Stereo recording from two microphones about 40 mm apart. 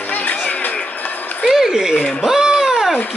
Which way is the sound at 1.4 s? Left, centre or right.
Centre.